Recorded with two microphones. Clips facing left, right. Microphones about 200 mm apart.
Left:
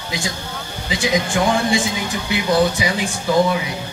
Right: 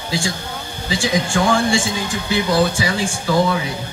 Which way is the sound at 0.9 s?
20° left (ahead or behind).